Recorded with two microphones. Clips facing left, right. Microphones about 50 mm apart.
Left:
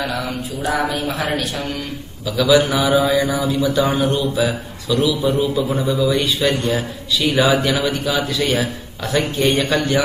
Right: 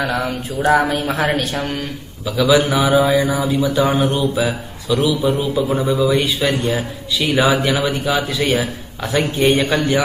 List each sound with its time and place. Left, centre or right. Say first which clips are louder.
0.0 s speech: right 3 dB; right
2.3 s speech: even; centre
8.5 s a man's voice: right 1 dB; centre